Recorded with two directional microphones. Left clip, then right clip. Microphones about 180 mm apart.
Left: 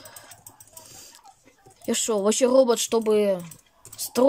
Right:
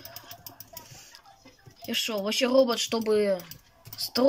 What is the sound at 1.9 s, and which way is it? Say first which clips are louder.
Speech: left 5 dB; 30° left (ahead or behind).